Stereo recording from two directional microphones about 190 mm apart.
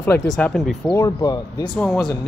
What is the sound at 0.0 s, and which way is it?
Speech, 10° left (ahead or behind).